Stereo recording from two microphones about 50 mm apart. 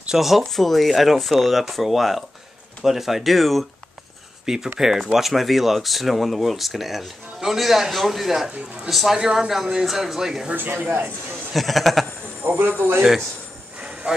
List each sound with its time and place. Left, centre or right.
0.1 s speech: centre
4.5 s speech: centre
10.5 s speech: right
11.5 s speech: centre
12.4 s speech: right
13.7 s jingle bell: right